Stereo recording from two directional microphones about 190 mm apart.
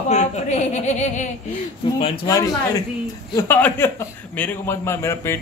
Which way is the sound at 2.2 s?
20° left (ahead or behind).